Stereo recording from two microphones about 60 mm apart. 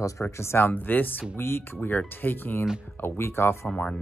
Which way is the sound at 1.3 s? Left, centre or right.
Left.